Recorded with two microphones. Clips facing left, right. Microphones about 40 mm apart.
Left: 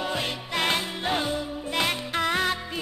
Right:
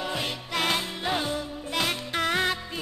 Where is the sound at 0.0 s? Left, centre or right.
Centre.